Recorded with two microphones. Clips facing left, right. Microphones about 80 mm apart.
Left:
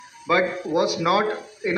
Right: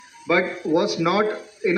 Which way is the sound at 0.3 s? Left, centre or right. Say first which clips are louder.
Right 1 dB; centre.